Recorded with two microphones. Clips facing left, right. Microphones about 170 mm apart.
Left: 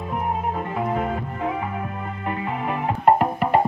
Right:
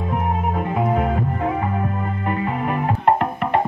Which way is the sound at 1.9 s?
40° right (ahead or behind).